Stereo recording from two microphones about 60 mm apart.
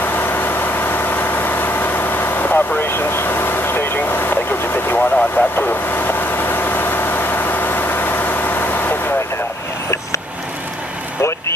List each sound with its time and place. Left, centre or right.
0.0 s vehicle: left
4.9 s vehicle: left